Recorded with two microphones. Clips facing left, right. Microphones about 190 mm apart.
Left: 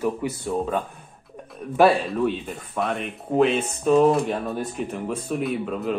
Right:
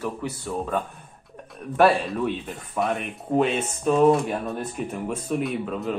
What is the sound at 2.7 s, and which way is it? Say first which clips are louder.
Speech: right 1 dB; centre (ahead or behind).